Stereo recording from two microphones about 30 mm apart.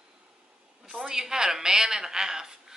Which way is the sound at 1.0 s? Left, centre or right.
Centre.